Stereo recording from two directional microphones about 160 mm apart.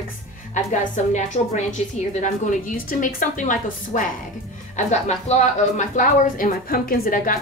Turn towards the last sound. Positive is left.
turn(degrees=55)  # may be behind; listen again after turning